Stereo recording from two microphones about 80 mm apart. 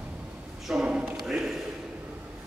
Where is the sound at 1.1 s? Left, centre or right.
Centre.